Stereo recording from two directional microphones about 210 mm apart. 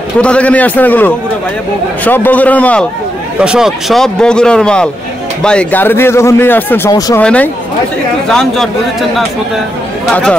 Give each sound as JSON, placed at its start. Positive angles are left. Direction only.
{"t": 0.2, "sound": "speech", "side_deg": 5}
{"t": 7.2, "sound": "speech", "side_deg": 5}